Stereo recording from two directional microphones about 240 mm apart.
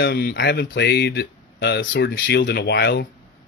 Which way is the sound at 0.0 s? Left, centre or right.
Left.